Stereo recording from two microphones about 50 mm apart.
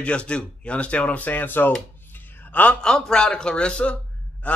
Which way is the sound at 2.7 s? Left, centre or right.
Centre.